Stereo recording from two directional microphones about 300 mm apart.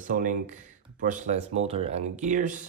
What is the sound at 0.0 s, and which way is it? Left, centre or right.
Speech, right.